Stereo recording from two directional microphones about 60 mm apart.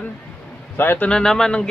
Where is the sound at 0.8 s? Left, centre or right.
Left.